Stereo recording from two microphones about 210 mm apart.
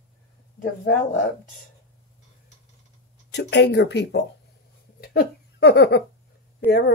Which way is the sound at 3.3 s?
55° left (ahead or behind).